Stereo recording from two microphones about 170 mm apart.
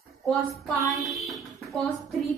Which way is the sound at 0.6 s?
Centre (ahead or behind).